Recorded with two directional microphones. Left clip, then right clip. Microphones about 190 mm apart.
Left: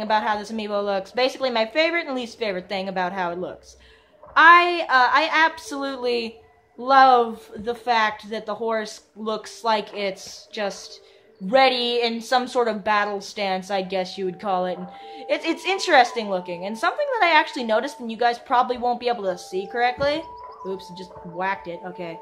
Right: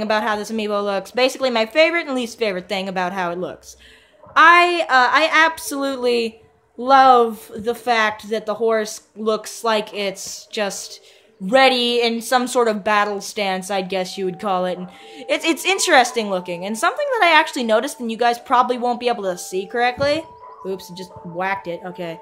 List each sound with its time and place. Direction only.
0.0 s a woman's voice: 30° right (ahead or behind)